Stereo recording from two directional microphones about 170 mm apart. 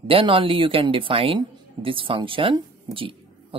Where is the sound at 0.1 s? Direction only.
30° right (ahead or behind).